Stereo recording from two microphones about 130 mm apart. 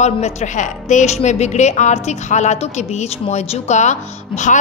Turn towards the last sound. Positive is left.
turn(degrees=70)  # may be behind; listen again after turning